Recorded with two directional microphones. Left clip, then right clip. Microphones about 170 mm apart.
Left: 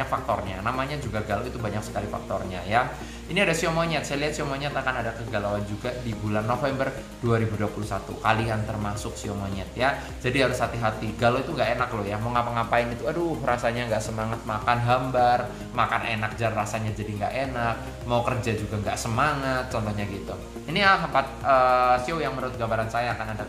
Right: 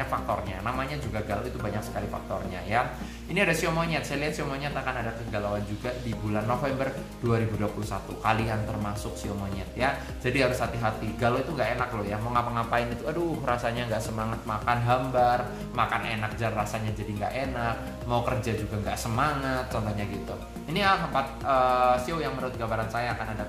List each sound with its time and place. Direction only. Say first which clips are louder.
0.0 s speech: left 3 dB; 5° left (ahead or behind)
2.7 s speech: left 3 dB; 5° left (ahead or behind)